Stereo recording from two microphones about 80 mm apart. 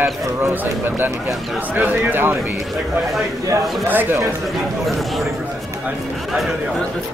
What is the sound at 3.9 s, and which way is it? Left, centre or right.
Speech, right.